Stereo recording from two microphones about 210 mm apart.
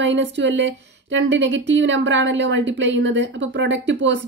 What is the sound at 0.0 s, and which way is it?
Speech, 60° right (ahead or behind).